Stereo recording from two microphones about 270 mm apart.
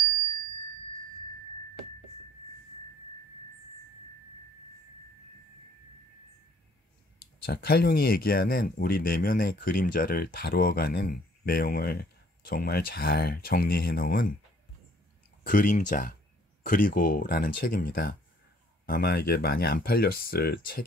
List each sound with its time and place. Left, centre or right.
7.4 s speech: left
15.4 s speech: left